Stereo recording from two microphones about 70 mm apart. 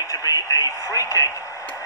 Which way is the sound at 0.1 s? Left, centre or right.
Left.